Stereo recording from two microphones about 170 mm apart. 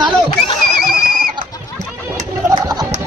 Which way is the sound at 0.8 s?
55° right (ahead or behind).